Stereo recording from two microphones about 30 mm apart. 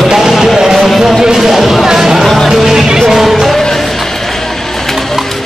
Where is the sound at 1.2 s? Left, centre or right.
Centre.